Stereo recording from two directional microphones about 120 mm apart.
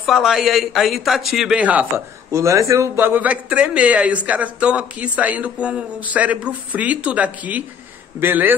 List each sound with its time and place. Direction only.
0.0 s a man's voice: centre (ahead or behind)
2.3 s speech: 25° right (ahead or behind)